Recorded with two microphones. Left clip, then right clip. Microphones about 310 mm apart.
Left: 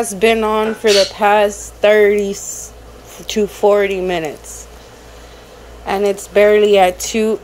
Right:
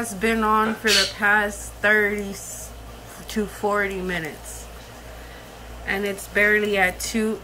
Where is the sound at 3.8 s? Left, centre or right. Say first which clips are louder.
Left 9 dB; centre.